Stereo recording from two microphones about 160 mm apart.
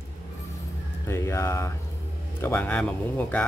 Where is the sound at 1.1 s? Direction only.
15° left (ahead or behind).